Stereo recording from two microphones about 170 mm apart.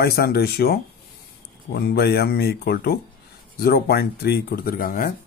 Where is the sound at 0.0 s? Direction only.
65° left (ahead or behind).